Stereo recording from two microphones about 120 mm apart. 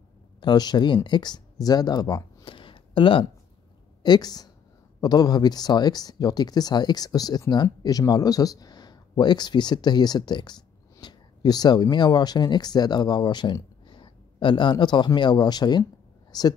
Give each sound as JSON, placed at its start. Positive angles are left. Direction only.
{"t": 0.4, "sound": "speech", "side_deg": 35}
{"t": 4.0, "sound": "speech", "side_deg": 35}
{"t": 16.3, "sound": "a sound", "side_deg": 35}